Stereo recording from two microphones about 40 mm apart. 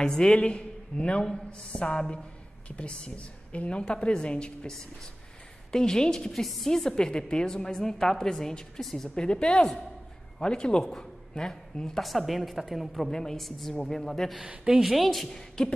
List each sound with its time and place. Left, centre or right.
0.0 s a woman's voice: centre
5.7 s a woman's voice: centre
6.4 s a woman's voice: centre
9.1 s a woman's voice: left
12.0 s a woman's voice: centre
13.1 s a woman's voice: centre
13.4 s a woman's voice: centre
14.8 s a woman's voice: centre
15.2 s a woman's voice: centre